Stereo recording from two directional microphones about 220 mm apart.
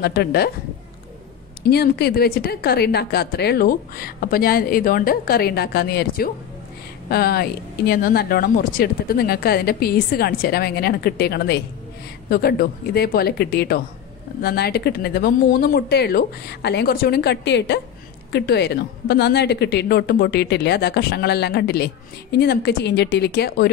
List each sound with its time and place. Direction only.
0.0 s a woman's voice: 45° left (ahead or behind)
1.7 s a woman's voice: 45° left (ahead or behind)